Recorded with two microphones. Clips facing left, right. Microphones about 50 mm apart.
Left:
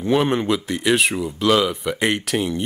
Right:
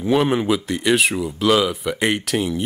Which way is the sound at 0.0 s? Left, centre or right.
Centre.